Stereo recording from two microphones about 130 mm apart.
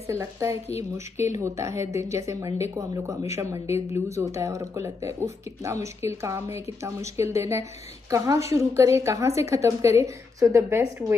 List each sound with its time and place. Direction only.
0.0 s speech: 25° right (ahead or behind)